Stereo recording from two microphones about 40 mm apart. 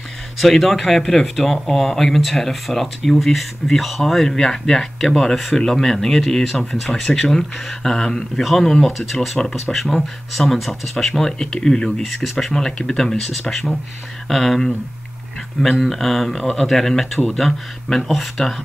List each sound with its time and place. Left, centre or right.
0.4 s speech: centre
8.4 s speech: centre
12.1 s speech: centre
15.8 s speech: centre
18.4 s speech: centre